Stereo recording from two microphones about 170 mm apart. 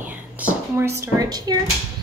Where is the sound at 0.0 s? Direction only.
10° right (ahead or behind).